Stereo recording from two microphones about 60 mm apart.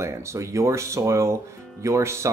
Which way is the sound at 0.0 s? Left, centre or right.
Right.